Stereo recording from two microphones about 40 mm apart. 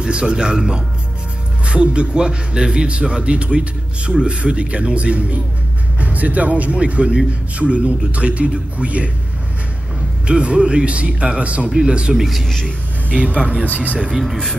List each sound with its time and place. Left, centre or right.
0.0 s a man's voice: right
10.2 s speech: right
11.7 s speech: right
12.1 s speech: centre
13.1 s speech: right
13.9 s speech: centre
14.2 s speech: centre